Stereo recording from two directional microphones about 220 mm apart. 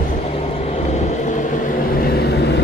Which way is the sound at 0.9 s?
35° left (ahead or behind).